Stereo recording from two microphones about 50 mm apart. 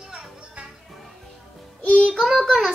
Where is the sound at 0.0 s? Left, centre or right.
Centre.